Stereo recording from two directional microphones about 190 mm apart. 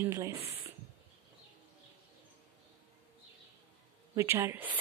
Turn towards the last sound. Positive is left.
turn(degrees=-10)  # may be behind; listen again after turning